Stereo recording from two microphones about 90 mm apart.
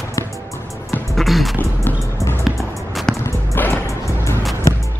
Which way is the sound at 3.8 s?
35° left (ahead or behind).